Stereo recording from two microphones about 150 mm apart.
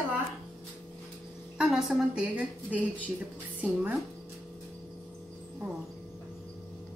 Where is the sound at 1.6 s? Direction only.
5° right (ahead or behind).